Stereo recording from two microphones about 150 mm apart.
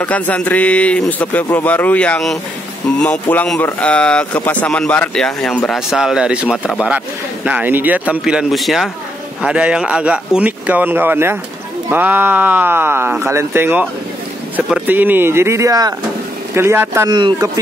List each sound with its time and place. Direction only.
0.0 s speech: 10° left (ahead or behind); by 17.1 s 15° right (ahead or behind)
17.1 s speech: 30° right (ahead or behind)